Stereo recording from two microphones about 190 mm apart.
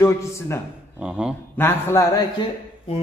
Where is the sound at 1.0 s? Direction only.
5° right (ahead or behind).